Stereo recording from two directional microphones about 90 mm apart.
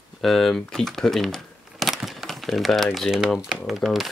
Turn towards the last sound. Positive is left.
turn(degrees=0)  # may be behind; listen again after turning